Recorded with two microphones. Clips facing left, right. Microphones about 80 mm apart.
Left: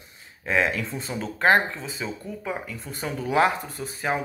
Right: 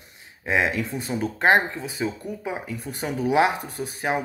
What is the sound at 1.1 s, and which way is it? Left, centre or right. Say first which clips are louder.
Speech: right 1 dB; centre.